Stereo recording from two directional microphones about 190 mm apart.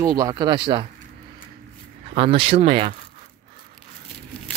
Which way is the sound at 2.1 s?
30° right (ahead or behind).